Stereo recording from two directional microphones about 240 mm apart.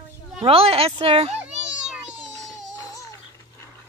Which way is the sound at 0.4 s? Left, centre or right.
Right.